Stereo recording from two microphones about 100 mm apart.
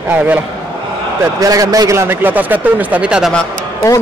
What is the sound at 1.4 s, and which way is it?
Speech, 35° right (ahead or behind).